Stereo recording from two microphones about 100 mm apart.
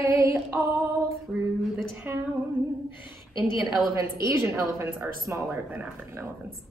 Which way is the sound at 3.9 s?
30° right (ahead or behind).